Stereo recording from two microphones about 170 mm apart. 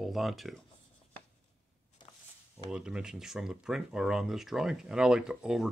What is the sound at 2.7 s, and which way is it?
Speech, 5° right (ahead or behind).